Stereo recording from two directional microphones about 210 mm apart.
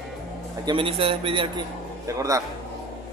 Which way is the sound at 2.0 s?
15° right (ahead or behind).